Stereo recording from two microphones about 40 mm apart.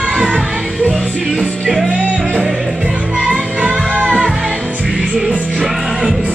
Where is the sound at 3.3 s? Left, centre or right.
Right.